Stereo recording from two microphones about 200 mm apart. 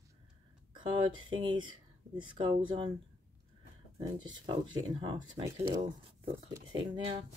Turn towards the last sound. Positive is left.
turn(degrees=-25)  # may be behind; listen again after turning